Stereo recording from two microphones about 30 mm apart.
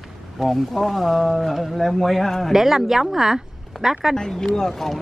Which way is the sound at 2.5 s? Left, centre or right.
Centre.